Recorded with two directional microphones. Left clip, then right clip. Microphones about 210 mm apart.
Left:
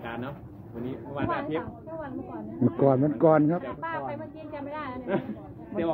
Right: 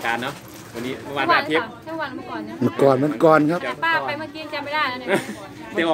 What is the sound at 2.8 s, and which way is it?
Speech, 5° right (ahead or behind).